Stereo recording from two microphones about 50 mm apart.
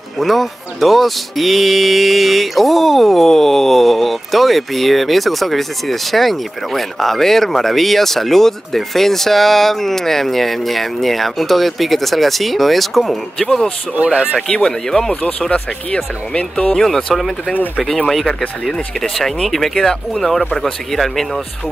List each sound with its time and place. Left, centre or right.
0.2 s speech: centre
14.0 s speech: centre
14.5 s speech: centre
15.5 s speech: left
16.7 s speech: centre